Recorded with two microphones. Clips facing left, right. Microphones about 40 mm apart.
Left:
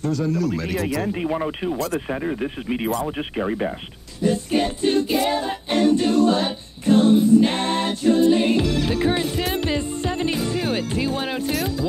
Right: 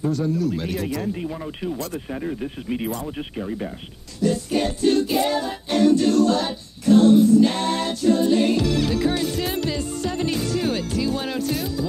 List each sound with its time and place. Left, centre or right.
0.5 s speech: centre
1.1 s speech: left
2.0 s a capella: left
4.2 s music: left
6.4 s a capella: left